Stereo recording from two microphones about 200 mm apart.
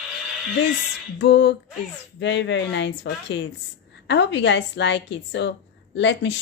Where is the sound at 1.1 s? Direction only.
60° left (ahead or behind).